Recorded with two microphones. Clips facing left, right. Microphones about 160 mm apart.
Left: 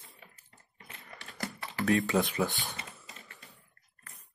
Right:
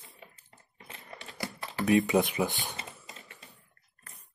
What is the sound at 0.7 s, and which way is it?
Coin, 20° right (ahead or behind).